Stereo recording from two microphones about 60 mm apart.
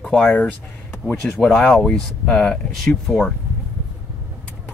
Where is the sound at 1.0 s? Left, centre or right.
Left.